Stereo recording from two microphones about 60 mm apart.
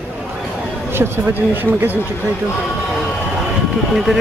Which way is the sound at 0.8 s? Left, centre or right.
Right.